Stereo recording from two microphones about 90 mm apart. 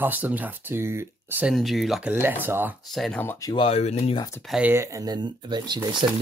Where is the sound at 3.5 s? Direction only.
85° left.